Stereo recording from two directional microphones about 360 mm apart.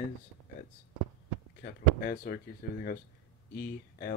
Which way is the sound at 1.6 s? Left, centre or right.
Left.